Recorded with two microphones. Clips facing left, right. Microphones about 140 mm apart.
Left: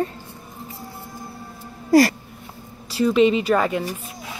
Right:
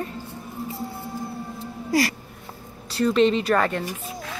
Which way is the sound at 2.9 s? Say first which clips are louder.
Left 2 dB; 5° left (ahead or behind).